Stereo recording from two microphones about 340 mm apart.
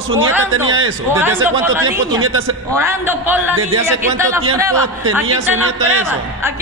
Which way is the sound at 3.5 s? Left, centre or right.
Right.